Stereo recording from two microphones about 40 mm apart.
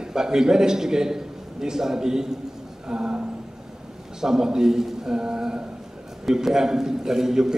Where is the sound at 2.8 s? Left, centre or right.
Right.